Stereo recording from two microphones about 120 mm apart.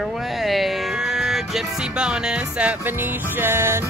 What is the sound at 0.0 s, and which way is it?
Speech, centre (ahead or behind).